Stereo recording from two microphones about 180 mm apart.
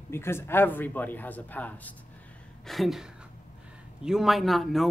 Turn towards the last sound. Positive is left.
turn(degrees=0)  # may be behind; listen again after turning